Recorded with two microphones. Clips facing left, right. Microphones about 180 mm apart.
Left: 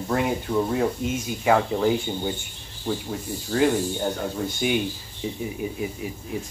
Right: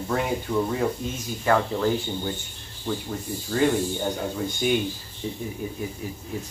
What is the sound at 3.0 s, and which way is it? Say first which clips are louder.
Speech: left 1 dB; 5° left (ahead or behind).